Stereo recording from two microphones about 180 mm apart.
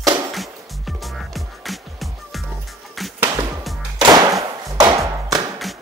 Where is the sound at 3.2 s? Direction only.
15° right (ahead or behind).